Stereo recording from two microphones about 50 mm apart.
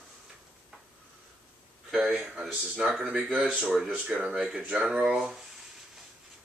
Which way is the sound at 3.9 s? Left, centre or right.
Right.